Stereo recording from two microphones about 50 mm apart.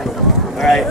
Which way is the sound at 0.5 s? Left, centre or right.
Centre.